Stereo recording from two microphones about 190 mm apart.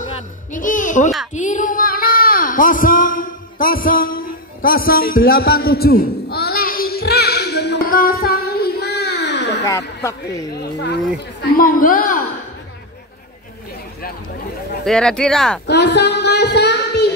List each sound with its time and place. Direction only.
0.5 s a sound: 45° left (ahead or behind); by 9.6 s 65° left (ahead or behind)
9.7 s speech: 15° left (ahead or behind)
11.5 s speech: 45° left (ahead or behind)
14.9 s speech: 5° left (ahead or behind)
15.6 s child singing: 60° left (ahead or behind)